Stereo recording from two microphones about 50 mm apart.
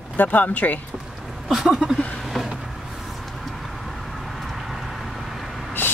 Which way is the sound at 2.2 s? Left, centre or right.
Centre.